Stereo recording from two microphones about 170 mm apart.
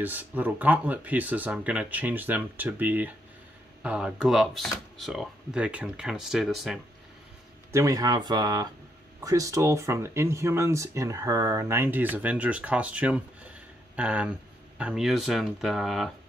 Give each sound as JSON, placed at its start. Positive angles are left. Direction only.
{"t": 0.0, "sound": "speech", "side_deg": -10}
{"t": 7.7, "sound": "speech", "side_deg": -20}